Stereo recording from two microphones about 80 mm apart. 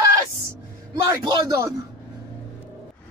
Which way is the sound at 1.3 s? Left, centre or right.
Right.